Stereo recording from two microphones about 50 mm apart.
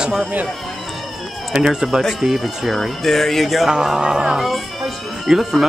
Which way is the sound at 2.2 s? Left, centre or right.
Centre.